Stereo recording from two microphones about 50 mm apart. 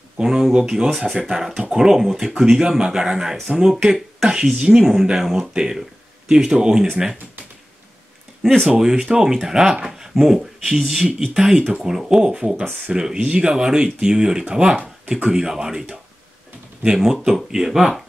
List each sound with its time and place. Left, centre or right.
0.2 s speech: centre
8.6 s speech: centre
16.8 s speech: centre